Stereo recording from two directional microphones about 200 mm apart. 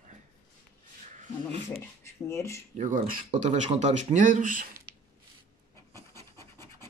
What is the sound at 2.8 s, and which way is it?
Speech, 40° right (ahead or behind).